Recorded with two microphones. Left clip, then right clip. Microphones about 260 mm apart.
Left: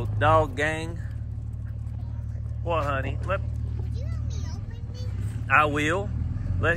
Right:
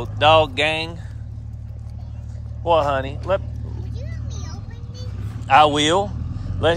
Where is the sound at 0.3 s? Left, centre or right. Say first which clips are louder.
Right 7 dB; centre.